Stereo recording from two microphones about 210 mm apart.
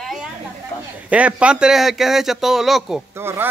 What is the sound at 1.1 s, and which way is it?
A man's voice, 5° right (ahead or behind).